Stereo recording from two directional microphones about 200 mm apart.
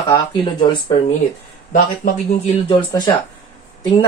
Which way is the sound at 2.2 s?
30° left (ahead or behind).